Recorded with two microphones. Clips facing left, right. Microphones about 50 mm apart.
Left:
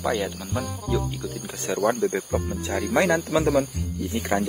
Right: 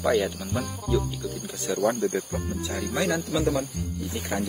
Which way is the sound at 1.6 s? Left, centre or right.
Left.